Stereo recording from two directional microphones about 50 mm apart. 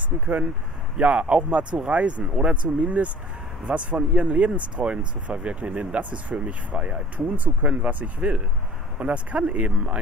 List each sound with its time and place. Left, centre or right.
0.1 s speech: centre